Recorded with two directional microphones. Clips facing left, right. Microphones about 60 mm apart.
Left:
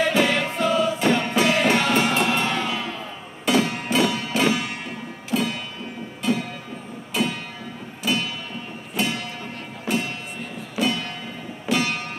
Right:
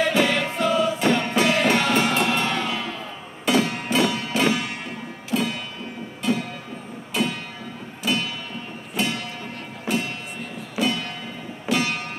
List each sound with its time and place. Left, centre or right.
0.0 s music: centre
7.1 s a sound: centre
8.0 s music: centre